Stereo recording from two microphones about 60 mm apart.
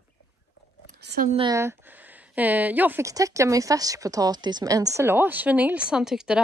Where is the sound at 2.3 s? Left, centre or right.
Right.